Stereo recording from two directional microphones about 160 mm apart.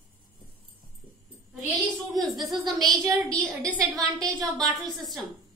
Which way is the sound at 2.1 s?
Centre (ahead or behind).